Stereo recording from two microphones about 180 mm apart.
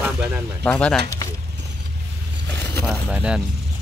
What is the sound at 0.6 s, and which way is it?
Speech, 5° left (ahead or behind).